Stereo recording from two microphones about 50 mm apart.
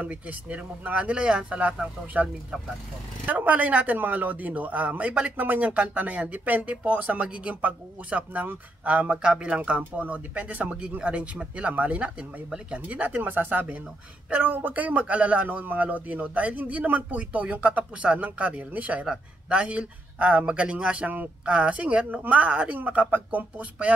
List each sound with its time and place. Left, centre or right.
0.0 s speech: right
3.3 s a man's voice: right